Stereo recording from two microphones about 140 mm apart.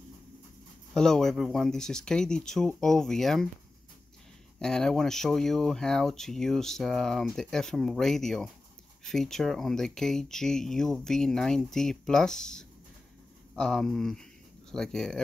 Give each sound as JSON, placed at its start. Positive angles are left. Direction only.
{"t": 0.9, "sound": "speech", "side_deg": 5}
{"t": 4.6, "sound": "speech", "side_deg": 5}